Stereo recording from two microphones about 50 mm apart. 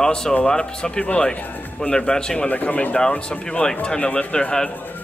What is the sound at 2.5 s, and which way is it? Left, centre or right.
Speech, left.